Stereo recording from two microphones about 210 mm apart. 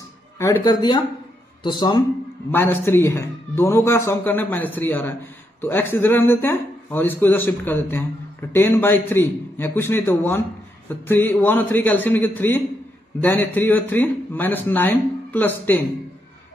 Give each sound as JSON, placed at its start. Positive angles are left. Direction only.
{"t": 0.4, "sound": "speech", "side_deg": 15}
{"t": 2.5, "sound": "speech", "side_deg": 10}